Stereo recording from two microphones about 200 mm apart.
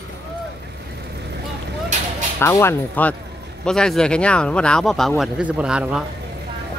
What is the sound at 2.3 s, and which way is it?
A man's voice, 15° left (ahead or behind).